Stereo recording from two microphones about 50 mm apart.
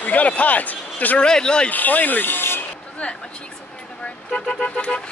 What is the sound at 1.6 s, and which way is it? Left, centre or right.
Speech, left.